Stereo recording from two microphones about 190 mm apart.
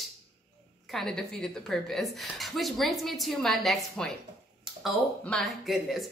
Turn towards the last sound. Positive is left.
turn(degrees=0)  # may be behind; listen again after turning